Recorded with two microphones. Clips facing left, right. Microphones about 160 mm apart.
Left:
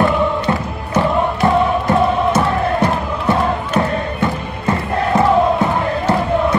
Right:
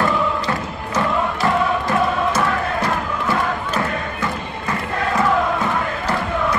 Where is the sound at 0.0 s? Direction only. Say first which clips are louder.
Left 4 dB; 25° left (ahead or behind).